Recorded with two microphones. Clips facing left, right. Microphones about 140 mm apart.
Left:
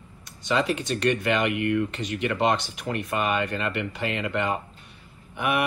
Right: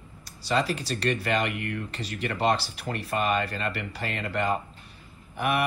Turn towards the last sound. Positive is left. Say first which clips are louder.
# left 1 dB
turn(degrees=-35)  # may be behind; listen again after turning